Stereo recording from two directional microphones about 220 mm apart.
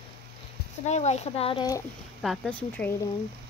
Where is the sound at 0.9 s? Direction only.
30° left (ahead or behind).